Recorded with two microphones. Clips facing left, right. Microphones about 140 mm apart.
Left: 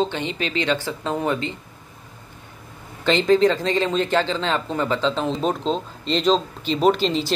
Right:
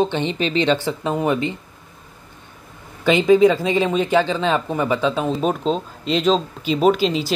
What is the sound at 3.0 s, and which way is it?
Speech, 10° right (ahead or behind).